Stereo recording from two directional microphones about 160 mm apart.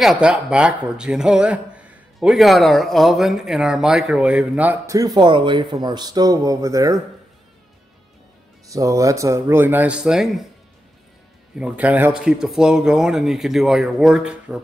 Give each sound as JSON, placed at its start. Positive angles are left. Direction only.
{"t": 0.0, "sound": "speech", "side_deg": -5}
{"t": 4.9, "sound": "speech", "side_deg": -25}
{"t": 8.6, "sound": "speech", "side_deg": -20}
{"t": 11.5, "sound": "speech", "side_deg": -10}